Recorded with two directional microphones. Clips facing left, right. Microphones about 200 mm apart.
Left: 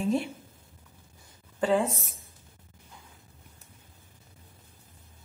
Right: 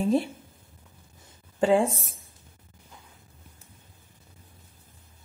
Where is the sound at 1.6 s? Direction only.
30° right (ahead or behind).